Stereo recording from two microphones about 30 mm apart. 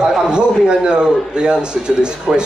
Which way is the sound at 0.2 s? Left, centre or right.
Right.